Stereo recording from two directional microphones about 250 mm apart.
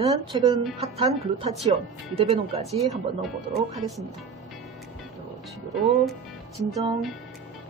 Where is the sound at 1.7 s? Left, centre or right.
Right.